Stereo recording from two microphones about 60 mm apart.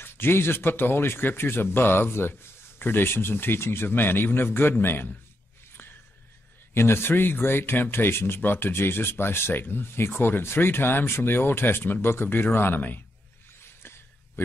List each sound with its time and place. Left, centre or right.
0.0 s speech: left
6.7 s speech: left